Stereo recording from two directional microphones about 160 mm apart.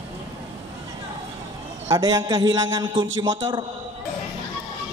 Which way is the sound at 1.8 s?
25° right (ahead or behind).